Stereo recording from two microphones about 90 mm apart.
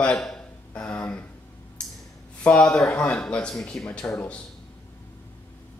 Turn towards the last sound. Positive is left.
turn(degrees=5)  # may be behind; listen again after turning